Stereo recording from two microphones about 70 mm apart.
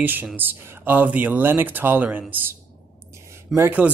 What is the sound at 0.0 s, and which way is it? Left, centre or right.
Speech, right.